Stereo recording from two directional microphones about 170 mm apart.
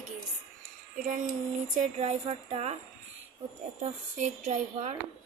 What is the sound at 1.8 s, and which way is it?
A woman's voice, 40° right (ahead or behind).